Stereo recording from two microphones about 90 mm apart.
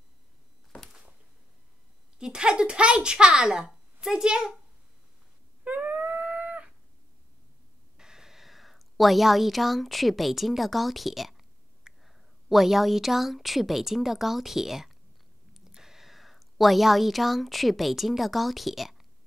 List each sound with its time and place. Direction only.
2.1 s a child's voice: 10° right (ahead or behind)
5.6 s dog: 15° right (ahead or behind)
8.0 s a woman's voice: 5° right (ahead or behind)